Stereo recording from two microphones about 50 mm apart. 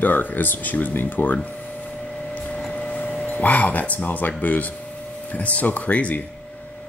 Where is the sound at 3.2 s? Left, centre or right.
Left.